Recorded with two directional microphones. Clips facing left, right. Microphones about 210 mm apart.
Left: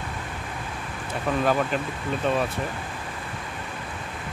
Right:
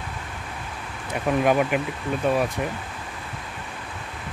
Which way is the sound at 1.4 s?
15° right (ahead or behind).